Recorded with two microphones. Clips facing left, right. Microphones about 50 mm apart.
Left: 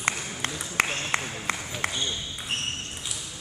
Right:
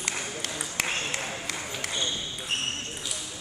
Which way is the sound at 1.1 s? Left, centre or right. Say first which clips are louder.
Left 4 dB; left.